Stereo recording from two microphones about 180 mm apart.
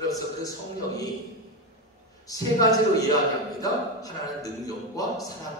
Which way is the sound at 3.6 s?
20° left (ahead or behind).